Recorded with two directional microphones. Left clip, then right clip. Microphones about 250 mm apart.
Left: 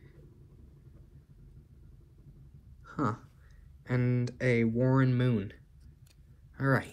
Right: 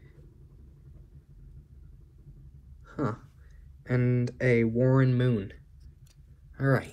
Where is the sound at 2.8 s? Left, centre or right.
Centre.